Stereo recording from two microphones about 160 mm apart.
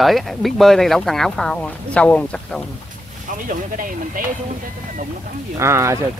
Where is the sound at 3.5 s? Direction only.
60° right (ahead or behind).